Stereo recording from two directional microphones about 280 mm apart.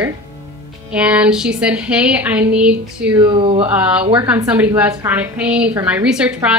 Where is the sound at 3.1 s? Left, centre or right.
Centre.